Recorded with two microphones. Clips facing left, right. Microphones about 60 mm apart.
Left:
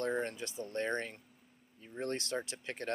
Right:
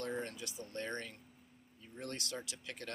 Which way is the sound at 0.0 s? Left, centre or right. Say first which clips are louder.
Left 6 dB; left.